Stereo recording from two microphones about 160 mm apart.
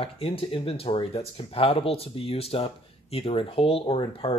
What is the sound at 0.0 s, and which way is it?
Speech, 35° left (ahead or behind).